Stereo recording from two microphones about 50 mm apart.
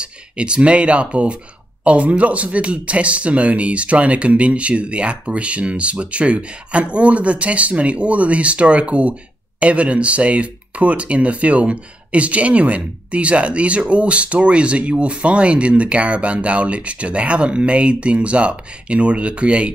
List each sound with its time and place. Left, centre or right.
0.0 s speech: right